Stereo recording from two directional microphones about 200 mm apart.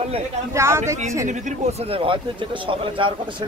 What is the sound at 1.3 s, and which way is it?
Speech, 35° right (ahead or behind).